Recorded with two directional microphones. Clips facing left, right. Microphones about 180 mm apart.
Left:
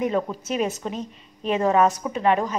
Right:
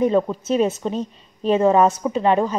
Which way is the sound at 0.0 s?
30° right (ahead or behind).